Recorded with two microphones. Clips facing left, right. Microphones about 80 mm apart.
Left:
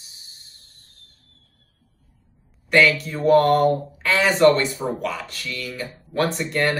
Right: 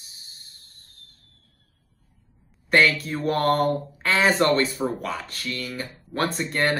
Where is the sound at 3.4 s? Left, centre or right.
Right.